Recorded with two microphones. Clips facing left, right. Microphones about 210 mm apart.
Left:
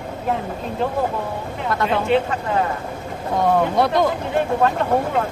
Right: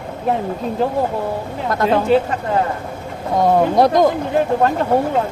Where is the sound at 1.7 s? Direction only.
40° right (ahead or behind).